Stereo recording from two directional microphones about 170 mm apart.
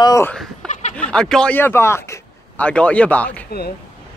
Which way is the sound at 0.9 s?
5° left (ahead or behind).